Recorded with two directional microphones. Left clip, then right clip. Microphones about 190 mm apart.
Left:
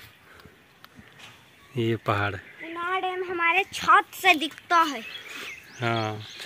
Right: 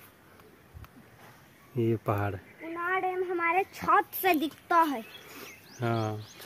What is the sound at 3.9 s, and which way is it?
Speech, 30° right (ahead or behind).